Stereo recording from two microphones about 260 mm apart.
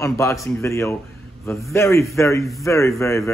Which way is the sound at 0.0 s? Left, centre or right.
Centre.